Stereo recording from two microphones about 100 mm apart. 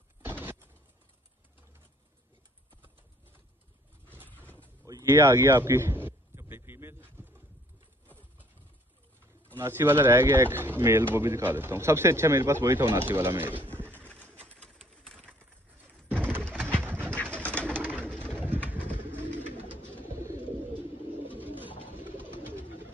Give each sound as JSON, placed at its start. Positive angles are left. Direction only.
{"t": 0.2, "sound": "a sound", "side_deg": -20}
{"t": 5.0, "sound": "a sound", "side_deg": -25}
{"t": 9.6, "sound": "speech", "side_deg": -25}
{"t": 14.6, "sound": "a sound", "side_deg": 5}
{"t": 16.4, "sound": "bird", "side_deg": 10}
{"t": 17.0, "sound": "pigeon", "side_deg": 10}
{"t": 17.9, "sound": "bird", "side_deg": 10}
{"t": 18.4, "sound": "bird", "side_deg": -20}
{"t": 21.4, "sound": "bird", "side_deg": -20}